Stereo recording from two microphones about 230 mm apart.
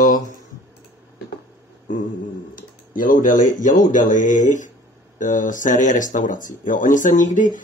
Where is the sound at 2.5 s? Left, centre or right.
Left.